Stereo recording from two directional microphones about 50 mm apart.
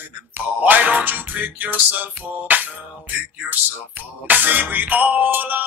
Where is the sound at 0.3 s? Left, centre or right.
Right.